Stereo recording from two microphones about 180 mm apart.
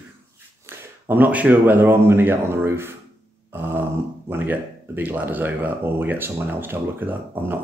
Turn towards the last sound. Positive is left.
turn(degrees=-10)  # may be behind; listen again after turning